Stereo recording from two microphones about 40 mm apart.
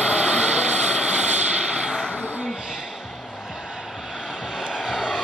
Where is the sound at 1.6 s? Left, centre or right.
Right.